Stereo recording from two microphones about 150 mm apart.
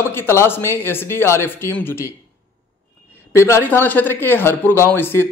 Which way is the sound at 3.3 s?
15° left (ahead or behind).